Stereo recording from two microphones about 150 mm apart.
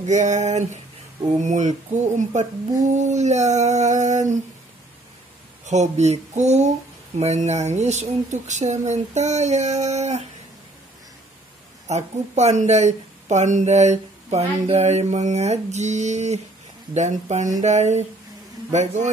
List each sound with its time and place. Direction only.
0.0 s speech: 55° right (ahead or behind)
5.7 s speech: 50° right (ahead or behind)
11.9 s speech: 50° right (ahead or behind)